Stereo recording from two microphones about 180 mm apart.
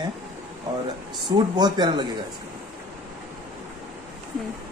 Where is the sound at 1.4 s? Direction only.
25° right (ahead or behind).